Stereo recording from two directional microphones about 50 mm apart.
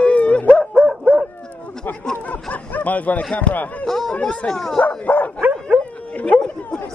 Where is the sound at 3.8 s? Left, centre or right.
Centre.